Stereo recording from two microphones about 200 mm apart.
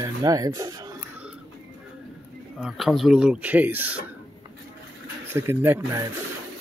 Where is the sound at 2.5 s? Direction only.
Centre (ahead or behind).